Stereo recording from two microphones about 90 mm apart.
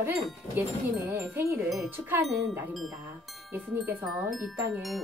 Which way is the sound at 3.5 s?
20° right (ahead or behind).